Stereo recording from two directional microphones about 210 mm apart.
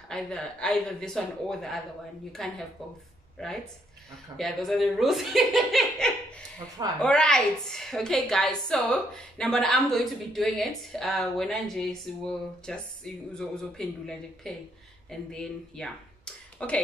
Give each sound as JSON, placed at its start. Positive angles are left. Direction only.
{"t": 0.1, "sound": "a woman's voice", "side_deg": 5}